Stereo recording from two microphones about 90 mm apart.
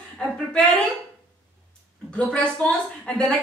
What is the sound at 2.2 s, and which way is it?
Speech, 10° left (ahead or behind).